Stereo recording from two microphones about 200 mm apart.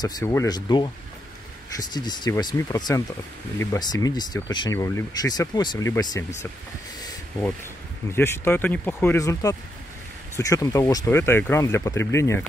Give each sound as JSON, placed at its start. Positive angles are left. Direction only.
{"t": 0.0, "sound": "speech", "side_deg": 15}
{"t": 8.1, "sound": "speech", "side_deg": 10}